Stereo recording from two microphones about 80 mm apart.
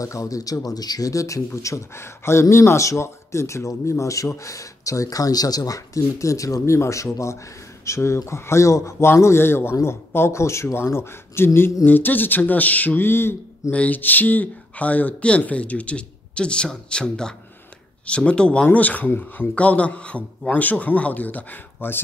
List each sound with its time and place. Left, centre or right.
0.0 s speech: left
13.7 s speech: centre